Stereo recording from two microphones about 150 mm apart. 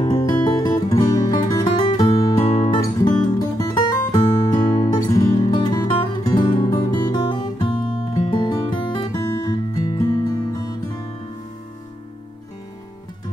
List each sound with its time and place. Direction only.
0.0 s music: 30° left (ahead or behind)
2.8 s music: 30° left (ahead or behind)